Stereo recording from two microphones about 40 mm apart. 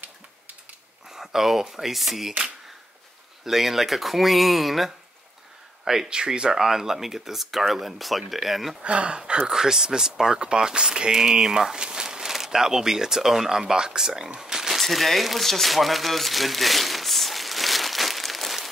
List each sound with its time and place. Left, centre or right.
1.0 s speech: centre
3.4 s speech: centre
6.0 s speech: right; by 8.7 s centre
8.8 s speech: right
9.5 s speech: centre
14.8 s crumpling: centre